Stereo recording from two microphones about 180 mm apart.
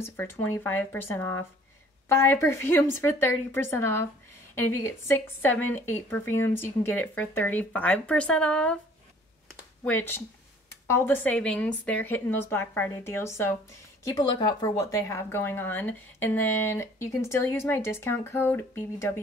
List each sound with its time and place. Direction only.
0.0 s speech: 10° left (ahead or behind)
9.8 s speech: 10° left (ahead or behind)